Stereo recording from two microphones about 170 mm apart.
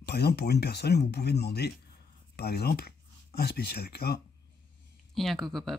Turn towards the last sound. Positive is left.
turn(degrees=0)  # may be behind; listen again after turning